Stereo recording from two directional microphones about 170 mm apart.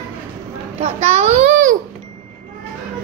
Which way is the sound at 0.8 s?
40° right (ahead or behind).